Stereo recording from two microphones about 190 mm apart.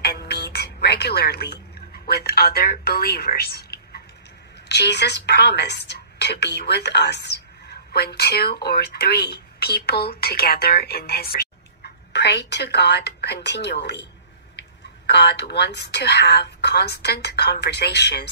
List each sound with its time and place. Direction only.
0.0 s music: 60° left (ahead or behind)
2.0 s a woman's voice: 55° left (ahead or behind)